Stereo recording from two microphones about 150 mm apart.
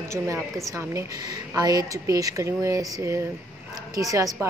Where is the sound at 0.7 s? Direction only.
20° right (ahead or behind).